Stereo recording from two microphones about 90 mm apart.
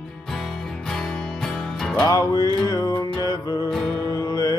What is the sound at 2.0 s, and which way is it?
Music, 40° left (ahead or behind).